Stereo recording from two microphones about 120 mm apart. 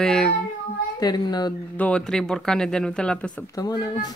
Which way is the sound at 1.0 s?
35° left (ahead or behind).